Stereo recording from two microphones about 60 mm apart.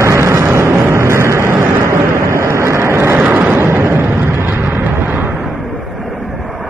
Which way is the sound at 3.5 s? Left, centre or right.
Right.